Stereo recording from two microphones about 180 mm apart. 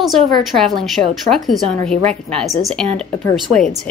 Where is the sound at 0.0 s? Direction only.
Centre (ahead or behind).